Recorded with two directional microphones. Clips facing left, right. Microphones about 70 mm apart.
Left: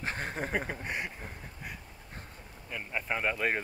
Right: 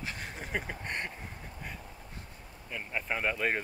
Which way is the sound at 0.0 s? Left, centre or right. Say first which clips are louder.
Left 6 dB; left.